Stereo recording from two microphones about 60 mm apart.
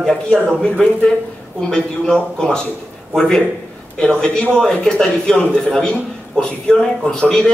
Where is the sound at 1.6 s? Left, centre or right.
Centre.